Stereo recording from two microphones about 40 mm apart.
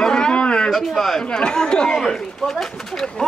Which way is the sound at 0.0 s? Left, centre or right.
Left.